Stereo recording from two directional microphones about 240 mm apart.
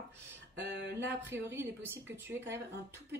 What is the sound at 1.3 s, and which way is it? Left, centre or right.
Speech, centre.